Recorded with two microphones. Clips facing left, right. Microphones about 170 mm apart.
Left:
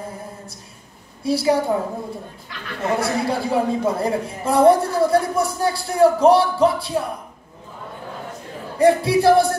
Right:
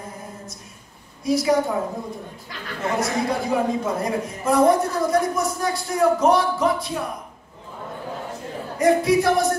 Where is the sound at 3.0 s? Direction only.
30° left (ahead or behind).